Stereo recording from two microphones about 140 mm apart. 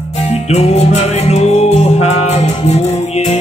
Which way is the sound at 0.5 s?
50° left (ahead or behind).